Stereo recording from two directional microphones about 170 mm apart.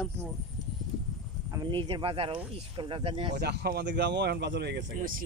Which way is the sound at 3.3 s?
75° right (ahead or behind).